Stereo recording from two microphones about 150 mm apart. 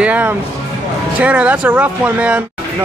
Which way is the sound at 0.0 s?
10° right (ahead or behind).